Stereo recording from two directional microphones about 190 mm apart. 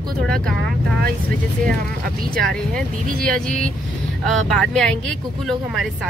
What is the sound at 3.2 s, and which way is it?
Speech, 5° left (ahead or behind).